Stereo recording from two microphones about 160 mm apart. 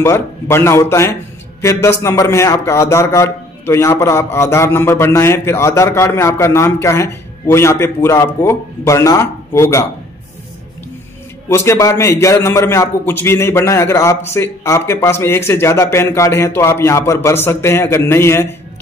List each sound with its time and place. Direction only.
0.0 s a man's voice: 15° left (ahead or behind)
11.4 s a man's voice: 15° left (ahead or behind)